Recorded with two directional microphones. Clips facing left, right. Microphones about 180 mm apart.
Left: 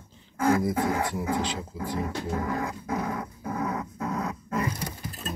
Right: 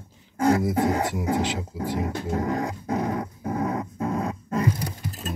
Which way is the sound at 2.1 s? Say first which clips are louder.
Right 3 dB; 40° right (ahead or behind).